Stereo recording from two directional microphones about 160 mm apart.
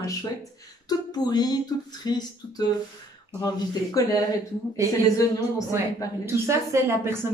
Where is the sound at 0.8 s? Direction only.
25° left (ahead or behind).